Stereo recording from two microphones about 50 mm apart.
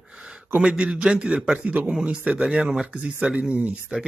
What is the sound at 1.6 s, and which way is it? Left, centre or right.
Speech, right.